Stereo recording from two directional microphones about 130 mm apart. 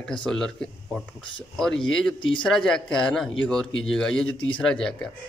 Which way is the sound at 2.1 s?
40° left (ahead or behind).